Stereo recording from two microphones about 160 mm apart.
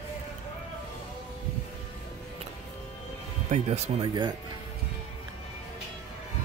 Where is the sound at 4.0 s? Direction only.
25° right (ahead or behind).